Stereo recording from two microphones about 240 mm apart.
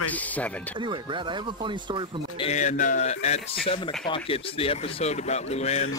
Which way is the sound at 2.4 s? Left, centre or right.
Left.